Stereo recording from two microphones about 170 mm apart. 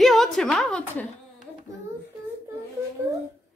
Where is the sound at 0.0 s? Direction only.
Centre (ahead or behind).